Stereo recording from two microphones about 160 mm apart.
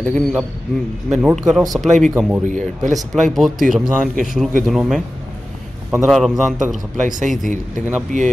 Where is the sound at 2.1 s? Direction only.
10° right (ahead or behind).